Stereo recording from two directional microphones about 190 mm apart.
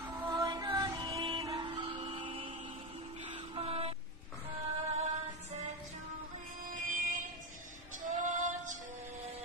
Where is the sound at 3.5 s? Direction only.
30° right (ahead or behind).